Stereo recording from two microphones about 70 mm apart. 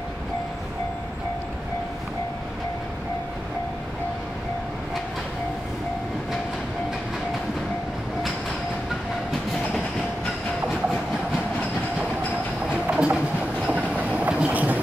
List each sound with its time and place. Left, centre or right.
12.9 s train: centre